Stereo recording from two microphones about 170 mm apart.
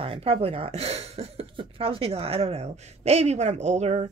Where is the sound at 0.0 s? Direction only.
35° right (ahead or behind).